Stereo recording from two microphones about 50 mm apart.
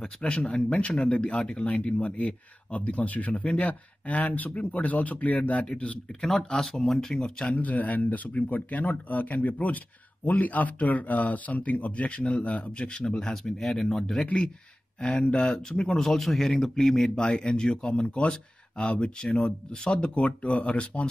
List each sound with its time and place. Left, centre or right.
0.2 s speech: left
6.2 s speech: centre
7.5 s speech: left
13.3 s speech: centre
16.1 s speech: centre; by 21.1 s left